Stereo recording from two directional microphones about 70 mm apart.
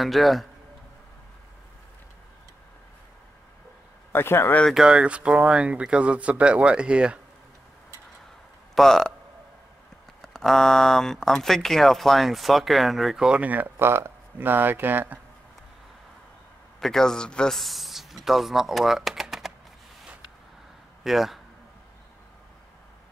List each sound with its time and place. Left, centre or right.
0.0 s speech: centre
4.1 s speech: left
4.7 s speech: centre
8.7 s speech: centre
10.2 s speech: centre
13.4 s speech: right
16.8 s speech: centre
21.0 s speech: centre